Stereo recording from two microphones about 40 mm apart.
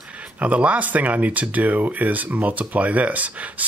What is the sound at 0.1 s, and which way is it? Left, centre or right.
Speech, right.